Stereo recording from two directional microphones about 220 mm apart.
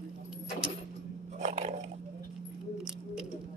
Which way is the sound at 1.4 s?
30° right (ahead or behind).